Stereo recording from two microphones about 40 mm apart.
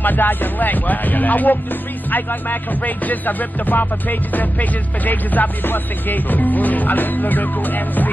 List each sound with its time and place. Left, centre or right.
0.0 s music: left